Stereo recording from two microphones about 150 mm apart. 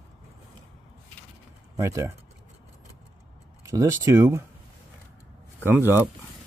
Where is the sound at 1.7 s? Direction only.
20° right (ahead or behind).